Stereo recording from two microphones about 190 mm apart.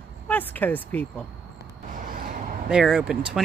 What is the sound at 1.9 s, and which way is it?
Vehicle, 45° right (ahead or behind).